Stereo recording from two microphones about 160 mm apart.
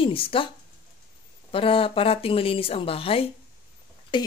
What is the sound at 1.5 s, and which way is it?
Speech, 35° left (ahead or behind).